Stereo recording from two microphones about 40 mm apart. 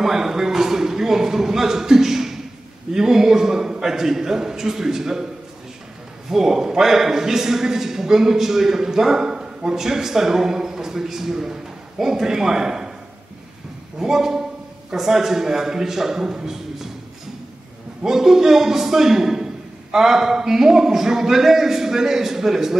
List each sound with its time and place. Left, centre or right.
0.0 s a man's voice: centre
6.3 s a man's voice: centre
13.9 s a man's voice: centre
18.0 s a man's voice: centre